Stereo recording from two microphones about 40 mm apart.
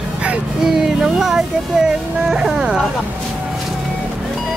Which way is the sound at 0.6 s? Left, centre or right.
Centre.